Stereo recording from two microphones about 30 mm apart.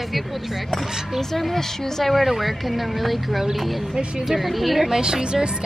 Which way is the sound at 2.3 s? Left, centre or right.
Centre.